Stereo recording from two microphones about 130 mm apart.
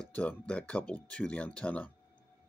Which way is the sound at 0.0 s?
10° left (ahead or behind).